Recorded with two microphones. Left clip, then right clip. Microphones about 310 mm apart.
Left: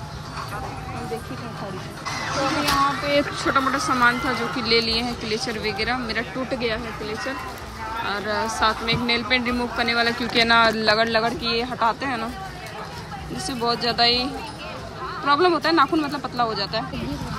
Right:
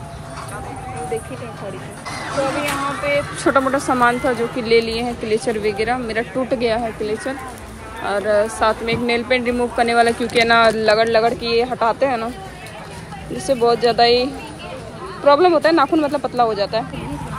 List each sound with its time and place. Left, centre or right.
2.0 s speech: centre
13.5 s speech: centre